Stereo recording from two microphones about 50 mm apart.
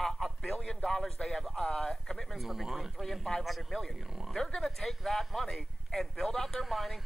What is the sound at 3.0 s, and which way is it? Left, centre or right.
Speech, centre.